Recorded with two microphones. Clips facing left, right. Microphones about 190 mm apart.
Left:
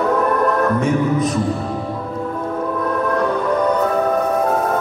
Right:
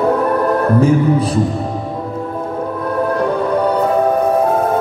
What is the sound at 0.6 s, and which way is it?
Music, 30° right (ahead or behind).